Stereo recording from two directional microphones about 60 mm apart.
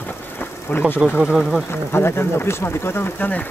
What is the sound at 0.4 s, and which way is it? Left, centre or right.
Sewing machine, left.